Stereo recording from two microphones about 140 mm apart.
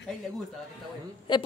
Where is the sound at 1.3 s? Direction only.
35° left (ahead or behind).